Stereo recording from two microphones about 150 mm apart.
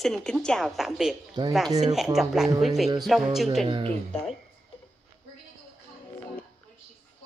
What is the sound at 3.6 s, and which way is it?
Speech, 40° right (ahead or behind).